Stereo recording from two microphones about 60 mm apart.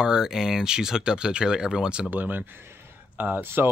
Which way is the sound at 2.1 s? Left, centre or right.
Right.